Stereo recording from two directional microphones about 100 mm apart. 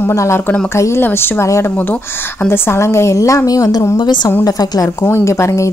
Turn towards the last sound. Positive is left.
turn(degrees=30)  # may be behind; listen again after turning